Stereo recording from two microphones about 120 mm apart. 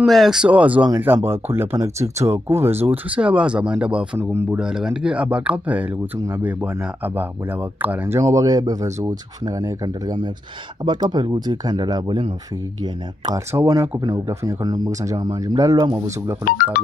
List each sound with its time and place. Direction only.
0.0 s speech: centre (ahead or behind)
4.2 s speech: 20° right (ahead or behind)
4.6 s speech: 5° right (ahead or behind)
7.8 s speech: 15° right (ahead or behind)
8.2 s speech: 30° right (ahead or behind)
13.2 s speech: 25° right (ahead or behind)